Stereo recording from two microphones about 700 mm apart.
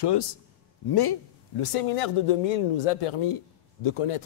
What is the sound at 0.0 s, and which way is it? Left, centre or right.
Speech, left.